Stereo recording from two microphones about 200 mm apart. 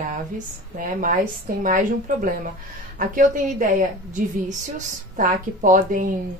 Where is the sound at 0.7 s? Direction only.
40° right (ahead or behind).